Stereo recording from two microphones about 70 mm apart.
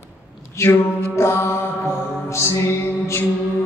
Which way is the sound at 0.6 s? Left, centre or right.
Left.